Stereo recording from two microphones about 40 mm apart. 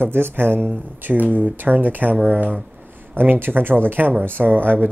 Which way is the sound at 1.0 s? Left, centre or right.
Right.